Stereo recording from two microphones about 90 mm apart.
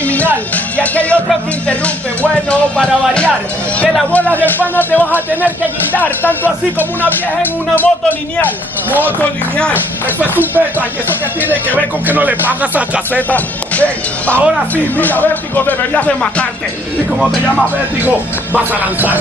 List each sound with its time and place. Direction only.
0.0 s music: 15° left (ahead or behind)
2.5 s speech: 15° left (ahead or behind)
5.1 s speech: 20° right (ahead or behind)
5.9 s speech: 20° left (ahead or behind)
10.0 s speech: 20° right (ahead or behind)
13.3 s speech: 15° left (ahead or behind)
18.0 s speech: 20° right (ahead or behind)